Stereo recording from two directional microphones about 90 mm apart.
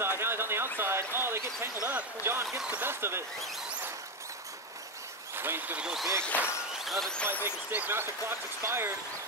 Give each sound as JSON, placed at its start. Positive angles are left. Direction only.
{"t": 0.2, "sound": "speech", "side_deg": -25}
{"t": 5.3, "sound": "speech", "side_deg": -25}
{"t": 5.8, "sound": "speech", "side_deg": -10}
{"t": 6.3, "sound": "speech", "side_deg": 20}
{"t": 6.8, "sound": "speech", "side_deg": 0}
{"t": 7.4, "sound": "speech", "side_deg": -20}